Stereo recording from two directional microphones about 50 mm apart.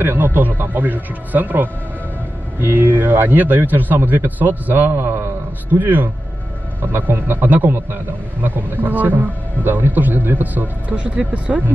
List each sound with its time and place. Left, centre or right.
0.0 s a man's voice: right
5.8 s a man's voice: right